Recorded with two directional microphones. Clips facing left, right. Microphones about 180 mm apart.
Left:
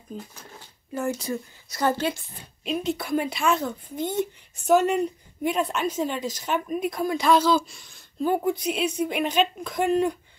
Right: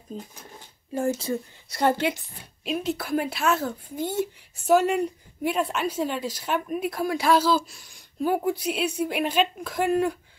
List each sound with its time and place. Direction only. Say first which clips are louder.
0.1 s a woman's voice: even; 30° right (ahead or behind)
2.6 s speech: left 1 dB; 5° right (ahead or behind)